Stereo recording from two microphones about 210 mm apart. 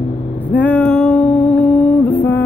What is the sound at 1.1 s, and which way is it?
Music, 35° left (ahead or behind).